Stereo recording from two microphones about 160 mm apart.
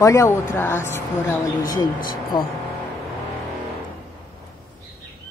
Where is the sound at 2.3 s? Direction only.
25° left (ahead or behind).